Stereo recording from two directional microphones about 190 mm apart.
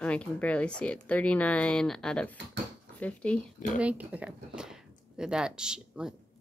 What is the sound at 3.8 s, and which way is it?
Speech, 5° right (ahead or behind).